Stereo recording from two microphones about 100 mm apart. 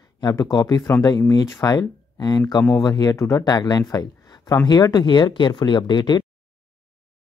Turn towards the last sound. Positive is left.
turn(degrees=45)  # may be behind; listen again after turning